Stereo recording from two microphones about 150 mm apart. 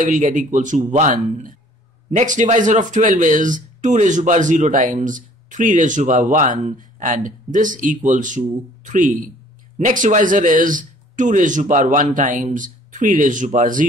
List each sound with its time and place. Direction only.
0.0 s speech: 60° right (ahead or behind)